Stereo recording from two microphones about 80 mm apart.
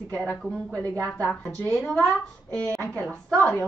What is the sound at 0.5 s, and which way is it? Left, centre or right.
Speech, centre.